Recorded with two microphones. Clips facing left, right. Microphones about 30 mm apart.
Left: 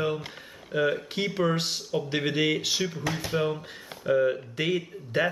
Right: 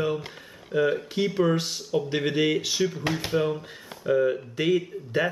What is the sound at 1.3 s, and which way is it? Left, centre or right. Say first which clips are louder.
Speech: right 3 dB; centre.